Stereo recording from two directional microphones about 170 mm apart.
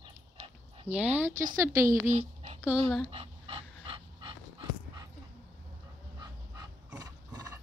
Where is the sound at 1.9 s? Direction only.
40° right (ahead or behind).